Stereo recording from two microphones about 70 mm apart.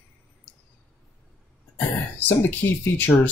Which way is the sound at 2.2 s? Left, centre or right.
Left.